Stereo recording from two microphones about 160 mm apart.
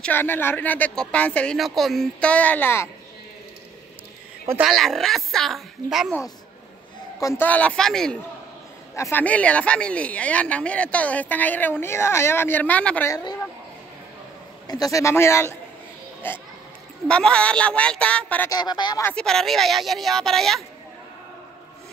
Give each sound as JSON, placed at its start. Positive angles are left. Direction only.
{"t": 0.0, "sound": "speech", "side_deg": 10}
{"t": 4.6, "sound": "a woman's voice", "side_deg": 0}
{"t": 7.2, "sound": "speech", "side_deg": 20}
{"t": 7.4, "sound": "a woman's voice", "side_deg": 10}
{"t": 8.9, "sound": "speech", "side_deg": 15}
{"t": 13.1, "sound": "speech", "side_deg": 25}
{"t": 14.7, "sound": "speech", "side_deg": 20}
{"t": 18.5, "sound": "speech", "side_deg": 25}
{"t": 19.0, "sound": "a woman's voice", "side_deg": 5}